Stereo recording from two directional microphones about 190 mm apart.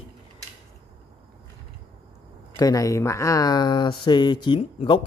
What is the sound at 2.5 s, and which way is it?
Speech, 15° left (ahead or behind).